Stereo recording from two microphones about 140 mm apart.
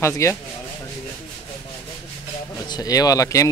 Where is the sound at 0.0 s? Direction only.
20° left (ahead or behind).